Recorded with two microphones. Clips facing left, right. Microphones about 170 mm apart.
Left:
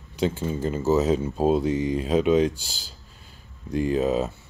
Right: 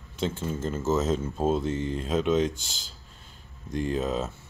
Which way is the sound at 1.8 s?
10° left (ahead or behind).